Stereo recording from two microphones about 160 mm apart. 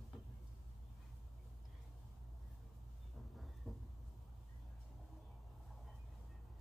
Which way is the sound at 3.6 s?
Centre (ahead or behind).